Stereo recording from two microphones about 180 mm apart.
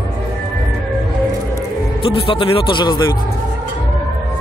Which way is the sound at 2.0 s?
30° left (ahead or behind).